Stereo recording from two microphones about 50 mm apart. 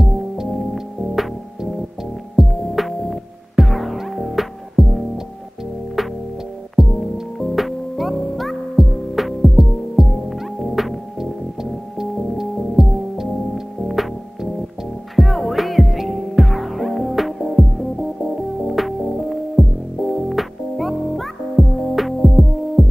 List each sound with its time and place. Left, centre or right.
0.0 s music: centre